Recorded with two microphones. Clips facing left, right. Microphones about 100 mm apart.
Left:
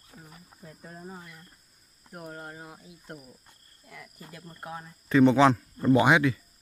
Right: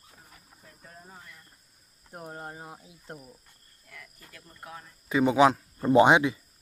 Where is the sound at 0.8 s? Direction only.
20° left (ahead or behind).